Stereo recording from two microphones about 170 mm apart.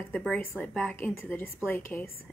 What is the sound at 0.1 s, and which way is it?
A woman's voice, 5° left (ahead or behind).